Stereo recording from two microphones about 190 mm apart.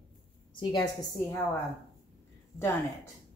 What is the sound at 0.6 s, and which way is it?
Speech, 25° left (ahead or behind).